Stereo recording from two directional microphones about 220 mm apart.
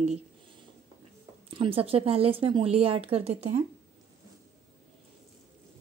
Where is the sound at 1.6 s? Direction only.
25° right (ahead or behind).